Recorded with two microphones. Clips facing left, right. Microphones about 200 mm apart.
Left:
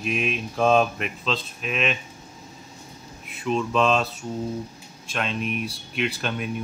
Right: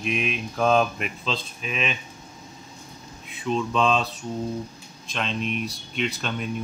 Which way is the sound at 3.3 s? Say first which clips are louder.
Left 1 dB; 5° left (ahead or behind).